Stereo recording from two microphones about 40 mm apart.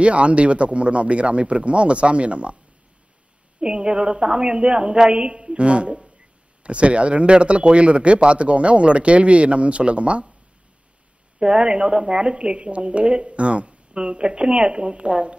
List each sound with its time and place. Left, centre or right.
0.0 s a man's voice: right
3.6 s speech: right
11.3 s speech: right